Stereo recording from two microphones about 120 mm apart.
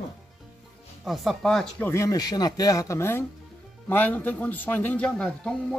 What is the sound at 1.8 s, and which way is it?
Speech, 25° left (ahead or behind).